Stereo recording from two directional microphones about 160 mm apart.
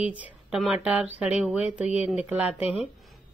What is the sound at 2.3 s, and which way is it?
Speech, 10° right (ahead or behind).